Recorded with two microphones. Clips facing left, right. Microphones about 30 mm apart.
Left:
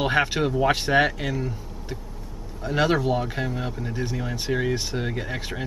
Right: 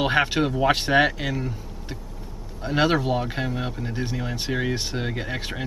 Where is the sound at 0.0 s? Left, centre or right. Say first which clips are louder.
Right 1 dB; centre.